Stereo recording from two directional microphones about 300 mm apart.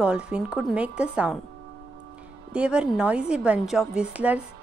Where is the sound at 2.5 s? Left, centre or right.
Centre.